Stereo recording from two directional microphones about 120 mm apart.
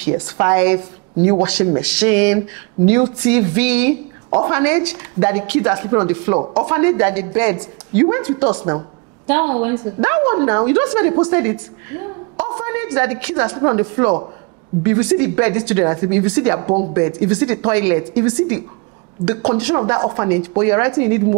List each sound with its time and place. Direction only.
0.0 s a woman's voice: 20° right (ahead or behind)